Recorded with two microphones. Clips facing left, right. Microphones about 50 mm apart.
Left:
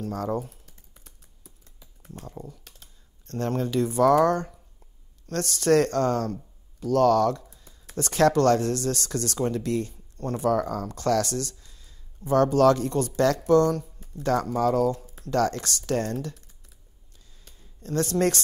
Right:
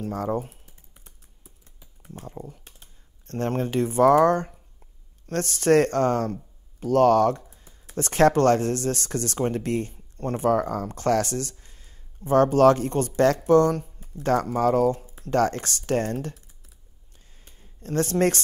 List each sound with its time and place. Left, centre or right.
0.0 s speech: right
0.7 s typing: centre
2.6 s computer keyboard: right
3.3 s speech: right
17.5 s a sound: right